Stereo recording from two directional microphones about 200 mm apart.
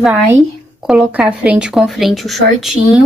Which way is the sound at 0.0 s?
5° right (ahead or behind).